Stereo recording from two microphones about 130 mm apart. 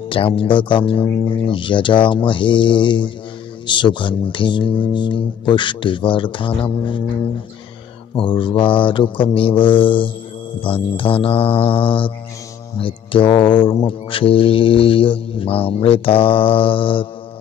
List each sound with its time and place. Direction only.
0.1 s speech: 45° left (ahead or behind)
8.2 s speech: 40° left (ahead or behind)